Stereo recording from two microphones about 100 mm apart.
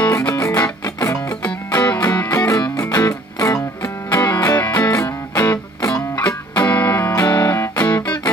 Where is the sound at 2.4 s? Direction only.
35° left (ahead or behind).